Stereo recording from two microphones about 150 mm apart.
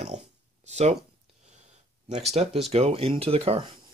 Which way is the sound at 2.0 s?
45° right (ahead or behind).